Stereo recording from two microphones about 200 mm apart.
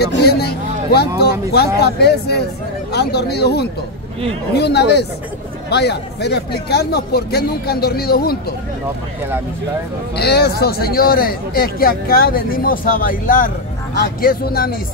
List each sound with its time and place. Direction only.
0.0 s speech: 55° left (ahead or behind)
10.1 s speech: 55° left (ahead or behind)